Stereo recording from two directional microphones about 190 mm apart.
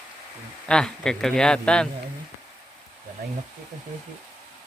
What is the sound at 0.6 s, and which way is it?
Speech, 5° left (ahead or behind).